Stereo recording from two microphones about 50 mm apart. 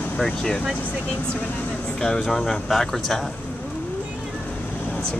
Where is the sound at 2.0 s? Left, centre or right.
Centre.